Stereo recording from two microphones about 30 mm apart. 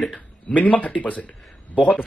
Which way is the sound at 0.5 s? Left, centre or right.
Left.